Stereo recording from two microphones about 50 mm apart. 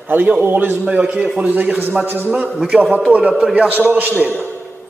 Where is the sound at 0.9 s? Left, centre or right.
Right.